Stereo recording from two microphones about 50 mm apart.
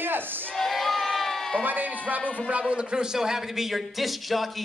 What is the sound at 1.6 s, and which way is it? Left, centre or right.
Speech, right.